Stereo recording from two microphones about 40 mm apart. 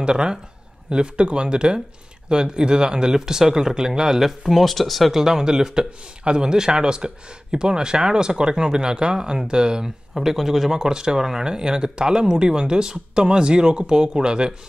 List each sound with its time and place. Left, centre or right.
0.0 s speech: right
4.5 s speech: centre
5.1 s speech: centre
10.1 s speech: centre
10.8 s speech: centre